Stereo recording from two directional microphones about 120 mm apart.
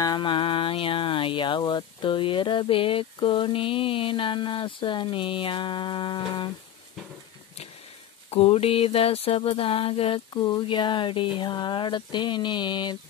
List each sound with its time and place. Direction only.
0.0 s music: 35° left (ahead or behind)
8.3 s music: 55° left (ahead or behind); by 12.9 s 40° left (ahead or behind)